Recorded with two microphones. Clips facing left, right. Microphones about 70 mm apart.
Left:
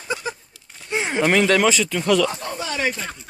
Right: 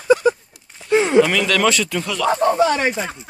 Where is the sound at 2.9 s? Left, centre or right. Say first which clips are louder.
Right 5 dB; centre.